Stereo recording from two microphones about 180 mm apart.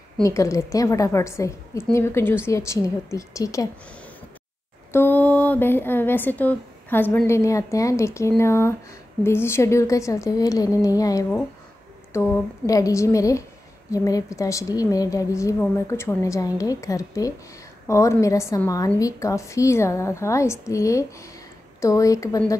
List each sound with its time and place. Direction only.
0.2 s speech: 15° left (ahead or behind)
4.9 s a woman's voice: 10° left (ahead or behind)